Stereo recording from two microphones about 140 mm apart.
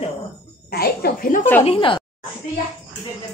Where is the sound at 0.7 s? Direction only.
90° left.